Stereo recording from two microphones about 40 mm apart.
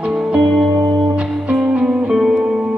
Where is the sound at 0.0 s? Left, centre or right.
Right.